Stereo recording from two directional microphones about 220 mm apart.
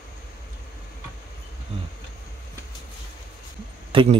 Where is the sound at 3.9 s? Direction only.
25° right (ahead or behind).